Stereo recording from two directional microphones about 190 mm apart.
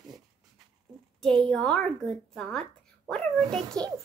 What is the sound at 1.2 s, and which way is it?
A child's voice, 5° left (ahead or behind).